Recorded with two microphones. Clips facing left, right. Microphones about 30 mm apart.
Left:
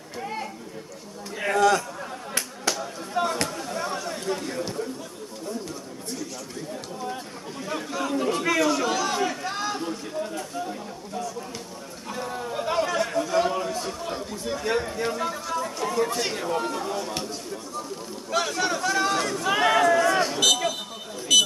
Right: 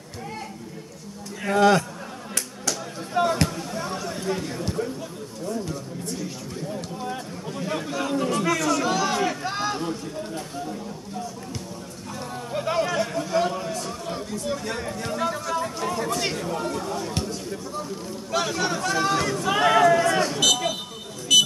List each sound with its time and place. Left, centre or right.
1.6 s a man's voice: right
3.2 s a sound: centre
7.6 s chatter: centre
8.3 s chatter: centre
8.8 s chatter: centre
12.5 s a sound: centre
14.8 s speech: centre
15.1 s a sound: centre
15.8 s chatter: centre
16.3 s speech: centre
18.3 s speech: centre
20.2 s a sound: centre